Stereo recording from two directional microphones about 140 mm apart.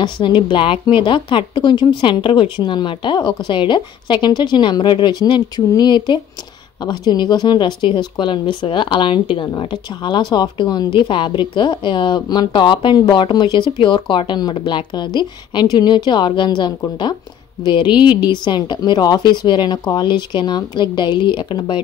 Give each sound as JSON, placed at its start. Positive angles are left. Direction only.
{"t": 0.0, "sound": "speech", "side_deg": 35}